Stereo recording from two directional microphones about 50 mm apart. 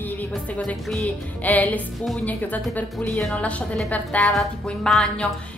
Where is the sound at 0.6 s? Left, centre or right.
Centre.